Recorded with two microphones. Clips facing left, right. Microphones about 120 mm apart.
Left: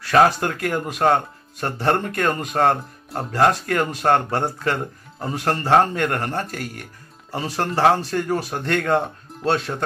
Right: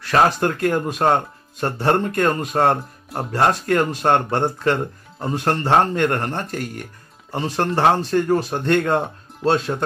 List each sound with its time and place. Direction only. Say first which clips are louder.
0.1 s speech: left 1 dB; 30° right (ahead or behind)